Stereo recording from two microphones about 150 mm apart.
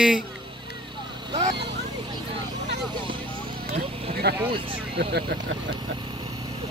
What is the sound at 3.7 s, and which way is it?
Vehicle, 90° right.